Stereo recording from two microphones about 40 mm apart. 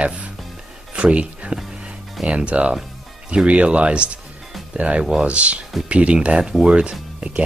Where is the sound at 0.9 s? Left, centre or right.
Right.